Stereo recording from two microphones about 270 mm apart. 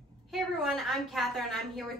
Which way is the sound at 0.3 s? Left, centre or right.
Centre.